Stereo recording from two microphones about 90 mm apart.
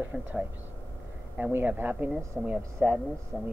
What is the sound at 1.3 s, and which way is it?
Speech, 20° right (ahead or behind).